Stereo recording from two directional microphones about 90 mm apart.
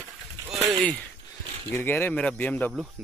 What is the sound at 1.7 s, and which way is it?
Speech, 25° left (ahead or behind).